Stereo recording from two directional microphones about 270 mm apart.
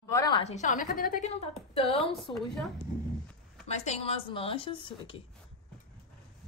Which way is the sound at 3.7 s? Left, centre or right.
Left.